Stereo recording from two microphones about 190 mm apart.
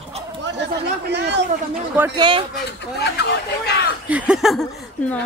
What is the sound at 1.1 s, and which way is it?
Speech, 60° right (ahead or behind).